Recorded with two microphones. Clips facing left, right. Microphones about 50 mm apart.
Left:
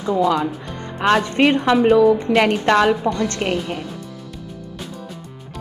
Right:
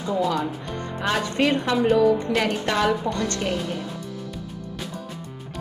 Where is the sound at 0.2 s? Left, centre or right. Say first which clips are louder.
Left 6 dB; left.